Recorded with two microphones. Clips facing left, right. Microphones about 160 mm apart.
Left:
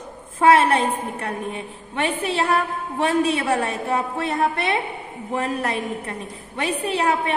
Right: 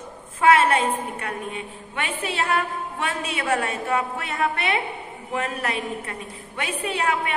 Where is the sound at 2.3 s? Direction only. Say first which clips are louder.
Even; 35° left (ahead or behind).